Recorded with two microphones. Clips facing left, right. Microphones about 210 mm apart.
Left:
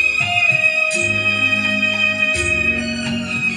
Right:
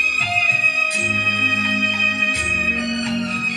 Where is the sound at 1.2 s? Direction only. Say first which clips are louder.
Left 1 dB; 30° left (ahead or behind).